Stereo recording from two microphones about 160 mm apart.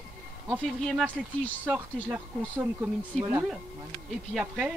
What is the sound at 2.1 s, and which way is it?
Speech, 10° right (ahead or behind).